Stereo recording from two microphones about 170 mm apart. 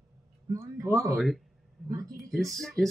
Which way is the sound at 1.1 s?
Centre (ahead or behind).